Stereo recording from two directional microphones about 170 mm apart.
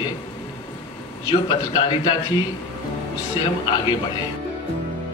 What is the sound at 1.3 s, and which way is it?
Speech, 30° left (ahead or behind).